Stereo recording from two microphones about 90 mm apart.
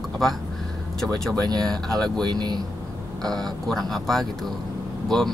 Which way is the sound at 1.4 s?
50° right (ahead or behind).